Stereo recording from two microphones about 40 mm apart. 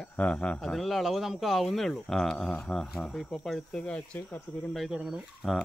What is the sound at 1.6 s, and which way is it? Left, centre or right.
Speech, centre.